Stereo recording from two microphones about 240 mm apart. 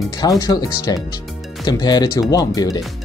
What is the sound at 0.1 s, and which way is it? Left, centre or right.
Speech, centre.